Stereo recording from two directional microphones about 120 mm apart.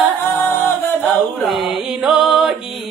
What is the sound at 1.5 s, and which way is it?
Mantra, 5° right (ahead or behind).